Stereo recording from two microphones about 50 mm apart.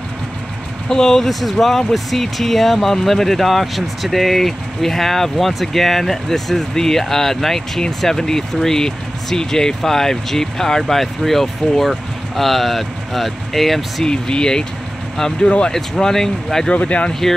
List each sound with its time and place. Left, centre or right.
0.8 s speech: centre
14.0 s speech: centre
16.7 s speech: left
17.1 s speech: centre